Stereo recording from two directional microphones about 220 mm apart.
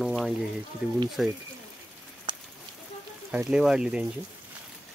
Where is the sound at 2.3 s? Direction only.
20° right (ahead or behind).